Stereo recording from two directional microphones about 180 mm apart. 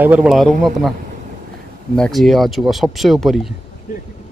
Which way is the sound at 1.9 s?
Centre (ahead or behind).